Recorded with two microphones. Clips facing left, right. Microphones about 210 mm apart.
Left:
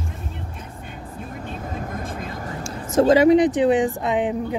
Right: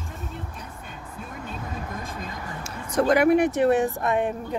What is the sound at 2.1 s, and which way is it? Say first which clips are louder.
Vehicle: left 4 dB; 45° left (ahead or behind).